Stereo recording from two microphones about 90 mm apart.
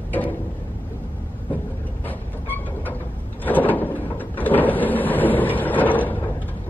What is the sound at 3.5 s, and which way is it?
Cupboard open or close, 20° left (ahead or behind).